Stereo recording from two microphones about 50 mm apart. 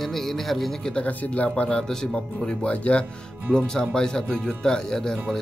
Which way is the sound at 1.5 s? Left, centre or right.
Centre.